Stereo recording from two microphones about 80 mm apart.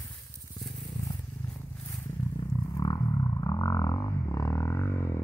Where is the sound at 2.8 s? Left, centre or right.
Left.